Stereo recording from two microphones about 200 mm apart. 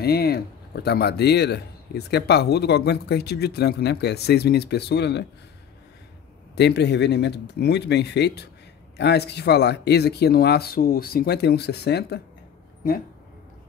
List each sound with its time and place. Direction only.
0.0 s a man's voice: 55° left (ahead or behind)
6.5 s a man's voice: 55° left (ahead or behind)